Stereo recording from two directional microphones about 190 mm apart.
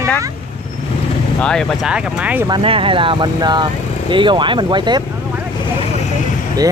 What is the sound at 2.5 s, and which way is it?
Speech, 30° right (ahead or behind).